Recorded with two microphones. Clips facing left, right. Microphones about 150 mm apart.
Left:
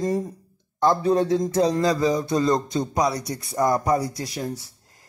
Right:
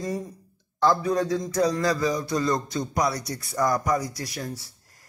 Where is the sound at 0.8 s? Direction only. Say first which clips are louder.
Left 3 dB; 25° left (ahead or behind).